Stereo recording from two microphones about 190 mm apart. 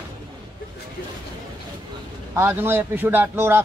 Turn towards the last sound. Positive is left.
turn(degrees=-10)  # may be behind; listen again after turning